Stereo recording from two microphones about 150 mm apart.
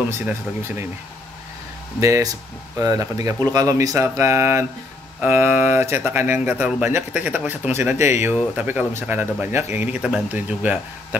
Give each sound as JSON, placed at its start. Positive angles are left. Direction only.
{"t": 0.1, "sound": "speech", "side_deg": -15}
{"t": 2.0, "sound": "speech", "side_deg": -20}